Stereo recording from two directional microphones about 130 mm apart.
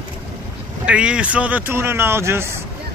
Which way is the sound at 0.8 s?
10° right (ahead or behind).